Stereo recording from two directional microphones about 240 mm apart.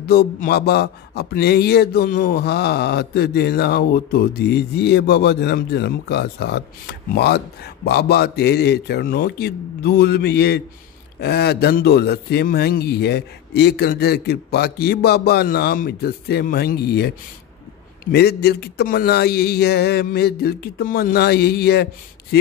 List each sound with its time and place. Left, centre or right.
0.0 s a sound: left
11.1 s a man's voice: left
18.1 s a man's voice: left